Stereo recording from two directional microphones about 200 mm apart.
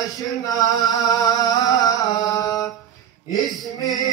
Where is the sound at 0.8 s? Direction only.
20° left (ahead or behind).